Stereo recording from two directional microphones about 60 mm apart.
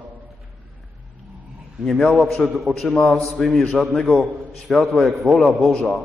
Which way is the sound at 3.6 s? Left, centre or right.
Centre.